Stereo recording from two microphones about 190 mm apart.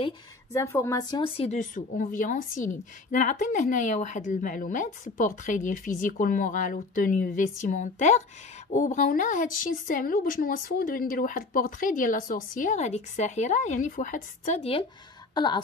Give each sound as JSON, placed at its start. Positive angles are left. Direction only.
{"t": 0.5, "sound": "speech", "side_deg": 15}